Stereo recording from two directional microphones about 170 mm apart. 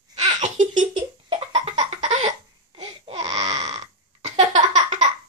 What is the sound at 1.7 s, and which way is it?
Baby laughter, 40° right (ahead or behind).